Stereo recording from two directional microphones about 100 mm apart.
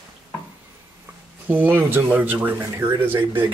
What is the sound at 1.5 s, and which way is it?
Speech, 20° right (ahead or behind).